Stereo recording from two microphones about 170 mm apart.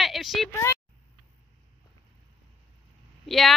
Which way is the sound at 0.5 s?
15° left (ahead or behind).